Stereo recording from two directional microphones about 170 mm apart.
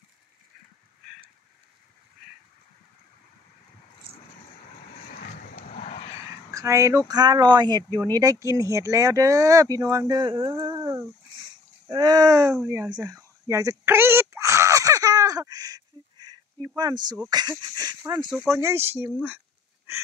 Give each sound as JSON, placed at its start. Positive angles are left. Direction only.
{"t": 5.1, "sound": "vehicle", "side_deg": 55}
{"t": 6.5, "sound": "speech", "side_deg": -20}
{"t": 12.9, "sound": "a sound", "side_deg": -20}
{"t": 16.6, "sound": "speech", "side_deg": -25}
{"t": 18.3, "sound": "speech", "side_deg": 0}
{"t": 18.6, "sound": "speech", "side_deg": -15}